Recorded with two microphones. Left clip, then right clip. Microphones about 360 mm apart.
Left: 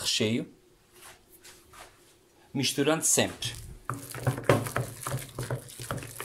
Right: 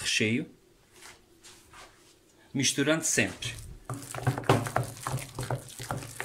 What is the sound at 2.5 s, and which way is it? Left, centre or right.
Speech, centre.